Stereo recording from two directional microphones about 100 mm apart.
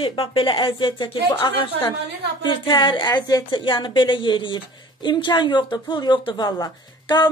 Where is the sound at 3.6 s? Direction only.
50° left (ahead or behind).